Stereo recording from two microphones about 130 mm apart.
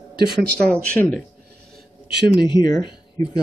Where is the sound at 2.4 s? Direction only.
35° left (ahead or behind).